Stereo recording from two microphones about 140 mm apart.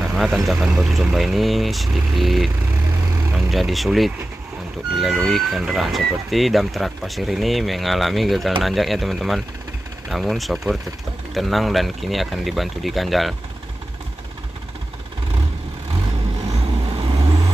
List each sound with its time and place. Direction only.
0.0 s vehicle: centre (ahead or behind)
0.5 s speech: 5° right (ahead or behind)
16.4 s vehicle: 35° right (ahead or behind)